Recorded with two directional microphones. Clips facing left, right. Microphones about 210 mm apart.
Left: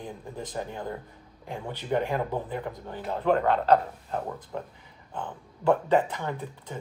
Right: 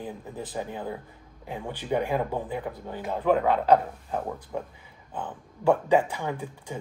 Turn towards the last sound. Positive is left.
turn(degrees=-10)  # may be behind; listen again after turning